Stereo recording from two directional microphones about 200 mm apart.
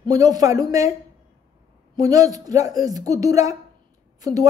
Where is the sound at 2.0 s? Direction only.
15° right (ahead or behind).